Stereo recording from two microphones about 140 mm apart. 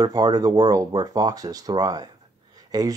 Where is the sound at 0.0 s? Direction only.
30° right (ahead or behind).